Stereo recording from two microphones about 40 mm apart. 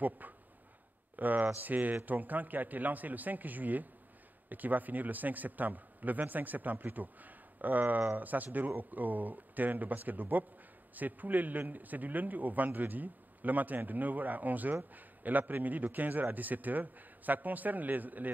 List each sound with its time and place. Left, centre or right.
1.1 s a man's voice: right